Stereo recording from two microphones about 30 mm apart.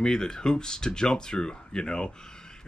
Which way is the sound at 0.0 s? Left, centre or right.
Left.